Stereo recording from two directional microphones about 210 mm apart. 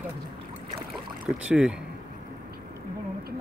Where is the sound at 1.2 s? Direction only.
5° right (ahead or behind).